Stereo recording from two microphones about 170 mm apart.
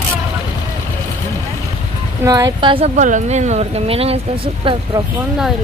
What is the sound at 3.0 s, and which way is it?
Speech, 45° right (ahead or behind).